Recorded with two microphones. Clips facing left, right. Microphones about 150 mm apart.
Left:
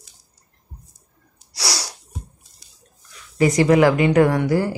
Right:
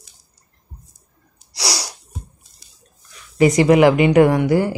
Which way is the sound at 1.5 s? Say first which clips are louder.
Right 2 dB; 15° right (ahead or behind).